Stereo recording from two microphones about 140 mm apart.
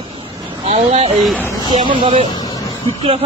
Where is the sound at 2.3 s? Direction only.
25° left (ahead or behind).